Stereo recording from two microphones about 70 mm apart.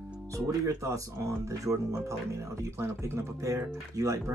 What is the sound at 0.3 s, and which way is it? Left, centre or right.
Speech, right.